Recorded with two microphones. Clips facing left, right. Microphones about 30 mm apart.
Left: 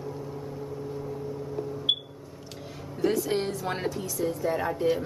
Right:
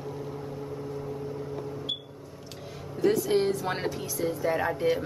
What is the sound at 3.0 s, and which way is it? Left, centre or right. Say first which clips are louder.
Speech: right 2 dB; centre.